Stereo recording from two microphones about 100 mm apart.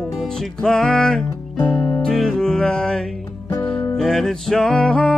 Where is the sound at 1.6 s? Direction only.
35° left (ahead or behind).